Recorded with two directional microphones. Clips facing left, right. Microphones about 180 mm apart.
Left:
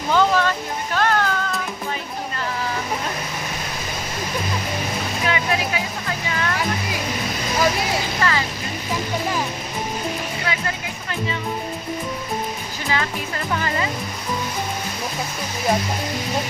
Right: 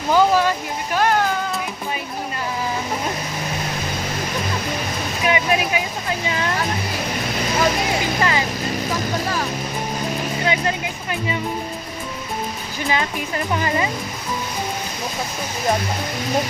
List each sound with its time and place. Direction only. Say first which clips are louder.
0.1 s speech: right 2 dB; 10° right (ahead or behind)
5.2 s speech: right 4 dB; 20° right (ahead or behind)
8.2 s vehicle: right 1 dB; 15° right (ahead or behind)
12.8 s speech: right 2 dB; 20° right (ahead or behind)